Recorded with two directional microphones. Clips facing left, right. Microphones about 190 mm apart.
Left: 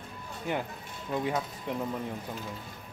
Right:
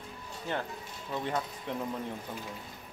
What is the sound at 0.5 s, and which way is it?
Speech, 15° left (ahead or behind).